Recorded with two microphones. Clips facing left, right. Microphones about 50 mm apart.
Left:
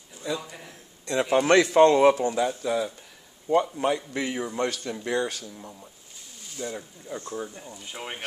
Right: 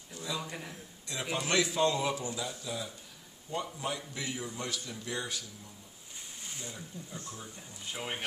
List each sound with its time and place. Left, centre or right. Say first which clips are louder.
0.3 s a man's voice: left 6 dB; left
6.6 s speech: left 13 dB; left
7.9 s speech: left 1 dB; centre